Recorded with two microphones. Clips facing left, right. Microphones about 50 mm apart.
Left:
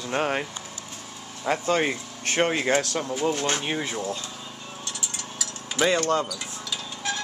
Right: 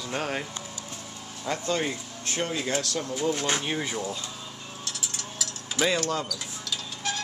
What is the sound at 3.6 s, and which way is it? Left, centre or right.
Speech, centre.